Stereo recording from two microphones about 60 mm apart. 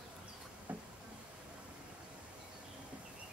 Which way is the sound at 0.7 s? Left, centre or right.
Right.